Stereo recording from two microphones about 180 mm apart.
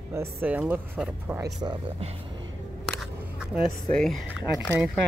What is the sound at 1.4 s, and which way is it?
Speech, 25° right (ahead or behind).